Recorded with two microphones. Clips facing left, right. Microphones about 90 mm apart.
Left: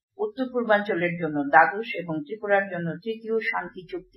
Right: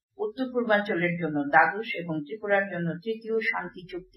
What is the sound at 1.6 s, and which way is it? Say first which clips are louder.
Speech: left 1 dB; 15° left (ahead or behind).